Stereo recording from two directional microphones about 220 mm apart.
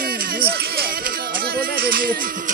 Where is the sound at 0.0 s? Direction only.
40° right (ahead or behind).